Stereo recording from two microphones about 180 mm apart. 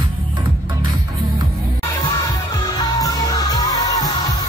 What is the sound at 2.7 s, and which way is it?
Music, 20° left (ahead or behind).